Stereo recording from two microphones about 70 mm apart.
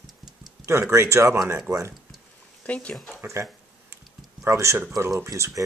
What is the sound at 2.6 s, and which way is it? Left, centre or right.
Speech, centre.